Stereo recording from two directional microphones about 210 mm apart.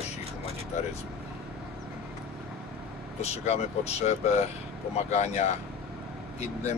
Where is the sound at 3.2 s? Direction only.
30° left (ahead or behind).